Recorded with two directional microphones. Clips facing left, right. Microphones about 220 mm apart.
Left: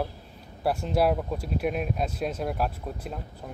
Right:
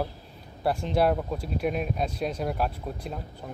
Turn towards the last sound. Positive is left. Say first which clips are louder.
# even
turn(degrees=0)  # may be behind; listen again after turning